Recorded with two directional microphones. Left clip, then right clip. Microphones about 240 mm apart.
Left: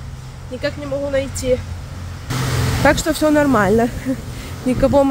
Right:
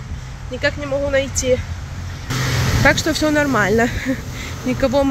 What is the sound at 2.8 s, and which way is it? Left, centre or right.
Speech, left.